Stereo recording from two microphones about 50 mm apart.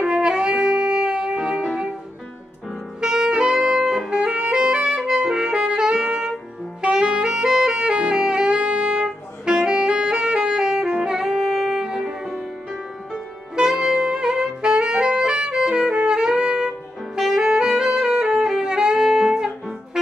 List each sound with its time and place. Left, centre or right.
0.0 s music: centre
3.0 s music: centre
6.8 s saxophone: centre
13.6 s saxophone: centre